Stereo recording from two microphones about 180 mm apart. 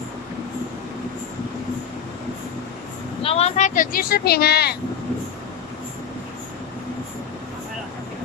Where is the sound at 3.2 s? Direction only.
35° left (ahead or behind); by 4.7 s 60° left (ahead or behind).